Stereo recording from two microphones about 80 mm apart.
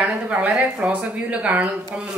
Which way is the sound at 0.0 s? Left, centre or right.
Centre.